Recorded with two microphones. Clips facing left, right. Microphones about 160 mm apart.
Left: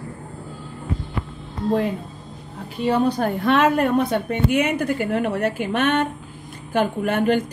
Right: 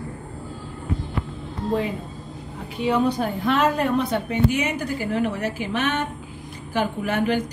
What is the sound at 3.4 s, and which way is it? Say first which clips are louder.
A woman's voice: left 3 dB; 60° left (ahead or behind).